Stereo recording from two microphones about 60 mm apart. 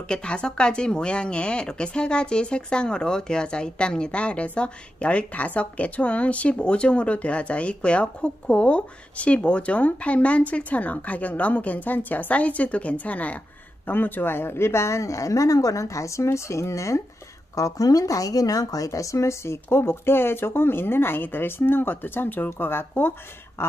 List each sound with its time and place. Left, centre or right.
0.1 s speech: centre; by 17.0 s left
17.6 s speech: left